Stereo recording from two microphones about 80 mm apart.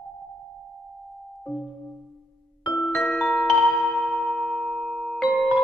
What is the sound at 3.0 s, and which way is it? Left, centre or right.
Music, centre.